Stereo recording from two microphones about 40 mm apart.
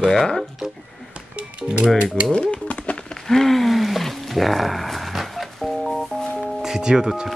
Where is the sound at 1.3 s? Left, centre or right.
Right.